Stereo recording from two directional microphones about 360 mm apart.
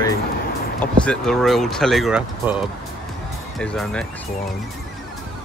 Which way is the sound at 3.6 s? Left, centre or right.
Centre.